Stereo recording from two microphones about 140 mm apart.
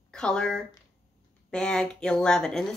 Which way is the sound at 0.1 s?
5° left (ahead or behind).